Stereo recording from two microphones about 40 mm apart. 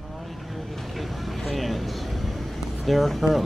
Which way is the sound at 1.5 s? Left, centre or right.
Centre.